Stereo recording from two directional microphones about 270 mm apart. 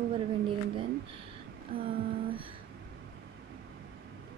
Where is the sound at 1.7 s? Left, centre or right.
Right.